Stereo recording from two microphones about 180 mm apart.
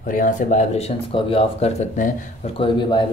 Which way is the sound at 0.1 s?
45° left (ahead or behind).